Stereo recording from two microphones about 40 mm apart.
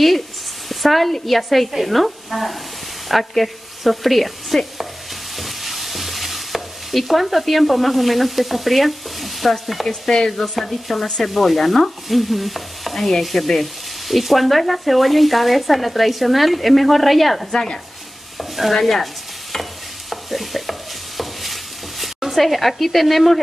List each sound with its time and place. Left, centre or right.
0.7 s stir: centre
3.1 s sizzle: centre
5.3 s stir: centre
9.8 s stir: centre
17.5 s stir: centre
18.4 s stir: centre
20.1 s stir: centre
22.0 s speech: centre